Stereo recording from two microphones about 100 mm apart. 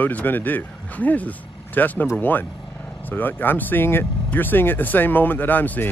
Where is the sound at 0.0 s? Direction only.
15° left (ahead or behind).